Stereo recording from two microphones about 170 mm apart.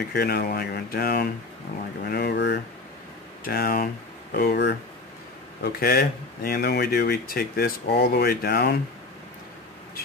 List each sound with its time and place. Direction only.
0.1 s speech: 70° left (ahead or behind); by 2.6 s 85° left
3.4 s speech: 60° left (ahead or behind)